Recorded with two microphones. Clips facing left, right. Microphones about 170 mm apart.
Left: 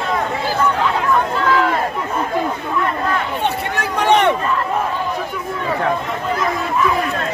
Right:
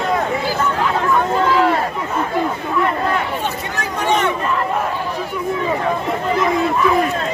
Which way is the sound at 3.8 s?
65° left (ahead or behind).